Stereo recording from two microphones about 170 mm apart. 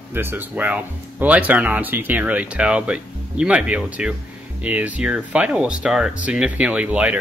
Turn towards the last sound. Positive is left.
turn(degrees=-10)  # may be behind; listen again after turning